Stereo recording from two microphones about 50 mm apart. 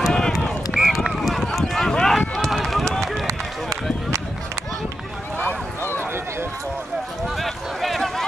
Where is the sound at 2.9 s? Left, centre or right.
Right.